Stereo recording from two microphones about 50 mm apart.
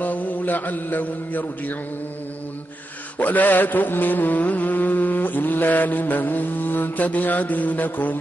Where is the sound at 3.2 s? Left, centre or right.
Left.